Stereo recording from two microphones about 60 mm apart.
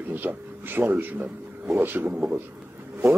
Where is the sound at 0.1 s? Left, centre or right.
Right.